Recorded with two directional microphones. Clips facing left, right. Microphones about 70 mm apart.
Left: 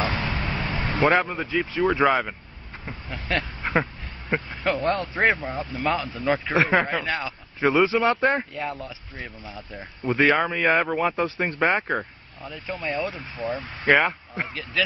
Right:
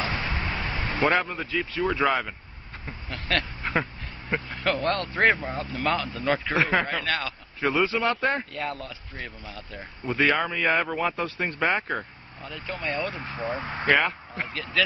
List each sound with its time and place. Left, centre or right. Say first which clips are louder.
0.0 s vehicle: left 3 dB; left
0.7 s a sound: left 3 dB; centre
1.5 s a man's voice: left 4 dB; centre
9.8 s a man's voice: left 3 dB; centre